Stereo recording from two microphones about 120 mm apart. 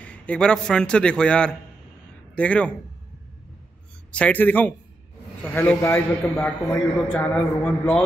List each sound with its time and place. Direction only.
0.0 s a man's voice: 10° left (ahead or behind)
4.1 s a man's voice: 10° left (ahead or behind)